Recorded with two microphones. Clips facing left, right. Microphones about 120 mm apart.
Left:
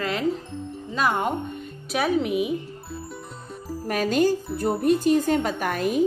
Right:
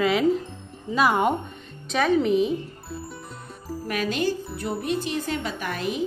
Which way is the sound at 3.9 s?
40° left (ahead or behind).